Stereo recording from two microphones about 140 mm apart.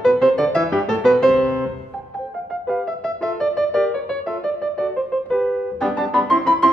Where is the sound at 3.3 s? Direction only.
5° left (ahead or behind).